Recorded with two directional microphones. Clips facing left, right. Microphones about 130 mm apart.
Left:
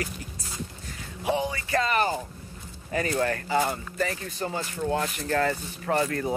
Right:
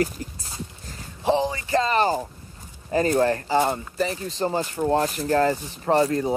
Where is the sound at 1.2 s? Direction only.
30° right (ahead or behind).